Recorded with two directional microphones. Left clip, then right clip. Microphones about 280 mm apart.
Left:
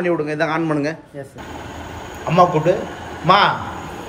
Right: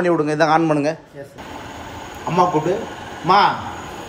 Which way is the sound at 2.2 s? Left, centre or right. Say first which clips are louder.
Left 3 dB; centre.